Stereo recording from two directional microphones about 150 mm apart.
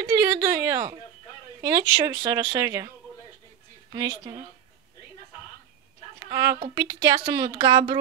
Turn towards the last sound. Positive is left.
turn(degrees=-30)  # may be behind; listen again after turning